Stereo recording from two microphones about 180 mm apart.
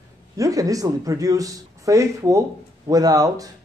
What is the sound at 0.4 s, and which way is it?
Speech, 20° right (ahead or behind).